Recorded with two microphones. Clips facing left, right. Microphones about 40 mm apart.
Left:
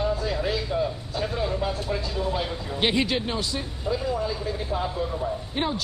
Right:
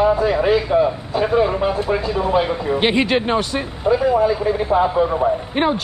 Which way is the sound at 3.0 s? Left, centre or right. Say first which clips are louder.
Right 9 dB; right.